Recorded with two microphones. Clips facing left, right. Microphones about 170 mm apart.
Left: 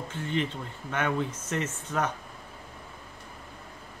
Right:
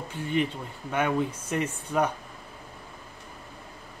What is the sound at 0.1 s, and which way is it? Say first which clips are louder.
A man's voice: right 3 dB; 10° right (ahead or behind).